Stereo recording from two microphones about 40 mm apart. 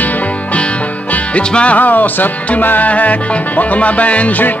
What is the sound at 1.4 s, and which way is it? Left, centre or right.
Speech, left.